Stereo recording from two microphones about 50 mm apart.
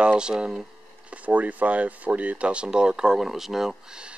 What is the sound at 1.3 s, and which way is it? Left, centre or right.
Speech, right.